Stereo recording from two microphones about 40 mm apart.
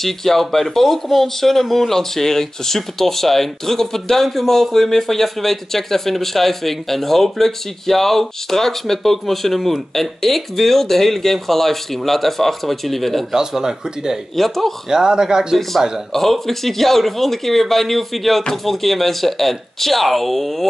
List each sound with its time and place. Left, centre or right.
0.0 s speech: centre
13.3 s speech: centre
14.3 s speech: centre
14.9 s speech: centre
16.1 s speech: centre